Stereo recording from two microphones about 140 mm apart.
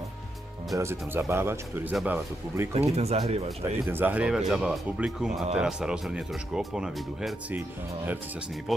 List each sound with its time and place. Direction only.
0.7 s speech: 20° right (ahead or behind)
2.7 s speech: 50° right (ahead or behind)
3.9 s speech: 10° right (ahead or behind)
8.7 s speech: centre (ahead or behind)